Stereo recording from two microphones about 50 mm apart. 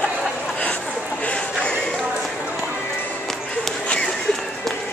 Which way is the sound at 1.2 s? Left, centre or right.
Left.